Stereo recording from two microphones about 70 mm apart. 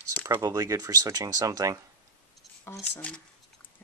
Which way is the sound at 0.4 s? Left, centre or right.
Right.